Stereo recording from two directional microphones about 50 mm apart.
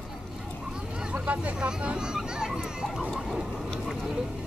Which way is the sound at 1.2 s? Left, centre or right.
Right.